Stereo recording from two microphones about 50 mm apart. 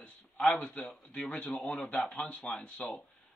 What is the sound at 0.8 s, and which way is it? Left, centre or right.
A man's voice, centre.